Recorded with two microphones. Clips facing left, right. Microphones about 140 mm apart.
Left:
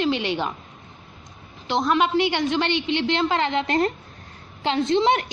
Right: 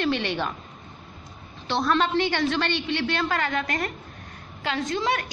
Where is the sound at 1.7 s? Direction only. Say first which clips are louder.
Left 2 dB; 15° left (ahead or behind).